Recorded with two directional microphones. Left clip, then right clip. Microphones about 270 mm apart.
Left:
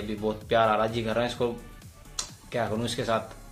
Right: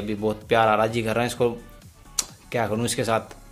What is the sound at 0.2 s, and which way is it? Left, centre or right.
Speech, right.